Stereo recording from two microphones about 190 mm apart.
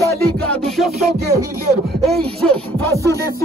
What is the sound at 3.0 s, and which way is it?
Music, 20° left (ahead or behind).